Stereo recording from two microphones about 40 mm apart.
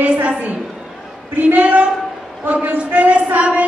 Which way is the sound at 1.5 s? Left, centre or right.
Right.